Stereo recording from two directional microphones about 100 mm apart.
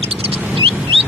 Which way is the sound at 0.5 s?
60° right (ahead or behind).